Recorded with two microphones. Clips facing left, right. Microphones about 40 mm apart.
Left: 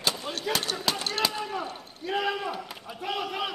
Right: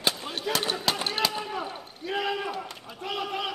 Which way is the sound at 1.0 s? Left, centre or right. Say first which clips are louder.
Right 1 dB; centre.